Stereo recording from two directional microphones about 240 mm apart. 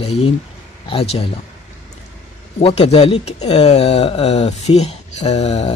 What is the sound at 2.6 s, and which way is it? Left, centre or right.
Speech, left.